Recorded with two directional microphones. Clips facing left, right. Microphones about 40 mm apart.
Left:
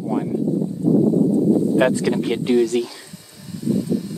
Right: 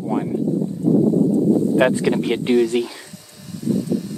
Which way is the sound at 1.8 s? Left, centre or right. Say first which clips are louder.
Right 1 dB; right.